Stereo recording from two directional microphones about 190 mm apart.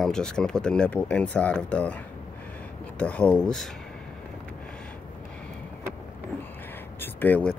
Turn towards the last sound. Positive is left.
turn(degrees=10)  # may be behind; listen again after turning